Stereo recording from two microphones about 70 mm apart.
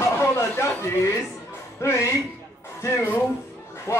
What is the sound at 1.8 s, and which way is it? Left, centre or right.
Speech, left.